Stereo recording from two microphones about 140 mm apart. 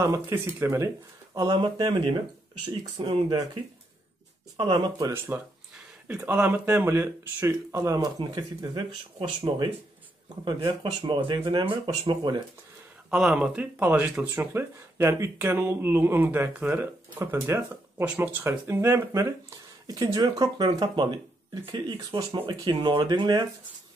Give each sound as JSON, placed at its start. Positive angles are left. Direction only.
{"t": 0.0, "sound": "speech", "side_deg": -20}
{"t": 1.3, "sound": "speech", "side_deg": -30}
{"t": 3.0, "sound": "speech", "side_deg": -45}
{"t": 4.6, "sound": "speech", "side_deg": -30}
{"t": 13.1, "sound": "speech", "side_deg": -5}